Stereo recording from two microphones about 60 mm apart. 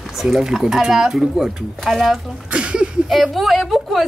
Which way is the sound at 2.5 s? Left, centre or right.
Centre.